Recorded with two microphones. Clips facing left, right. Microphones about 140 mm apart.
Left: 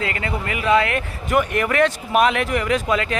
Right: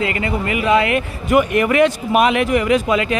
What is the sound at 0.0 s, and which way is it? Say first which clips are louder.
Speech: right 5 dB; 5° right (ahead or behind).